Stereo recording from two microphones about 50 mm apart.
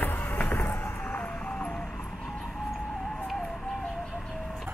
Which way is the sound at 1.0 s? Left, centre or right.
Left.